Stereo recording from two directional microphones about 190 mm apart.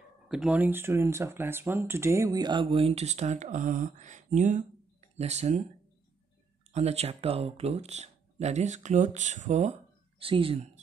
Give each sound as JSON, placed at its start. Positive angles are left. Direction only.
{"t": 0.3, "sound": "speech", "side_deg": -5}
{"t": 6.7, "sound": "speech", "side_deg": -35}